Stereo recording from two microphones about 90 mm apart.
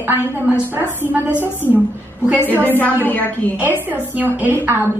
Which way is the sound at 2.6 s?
20° left (ahead or behind).